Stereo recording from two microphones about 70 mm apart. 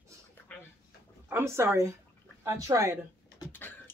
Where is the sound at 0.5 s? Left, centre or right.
Centre.